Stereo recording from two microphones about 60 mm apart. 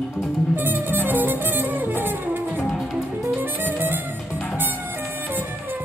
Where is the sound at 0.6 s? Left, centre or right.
Right.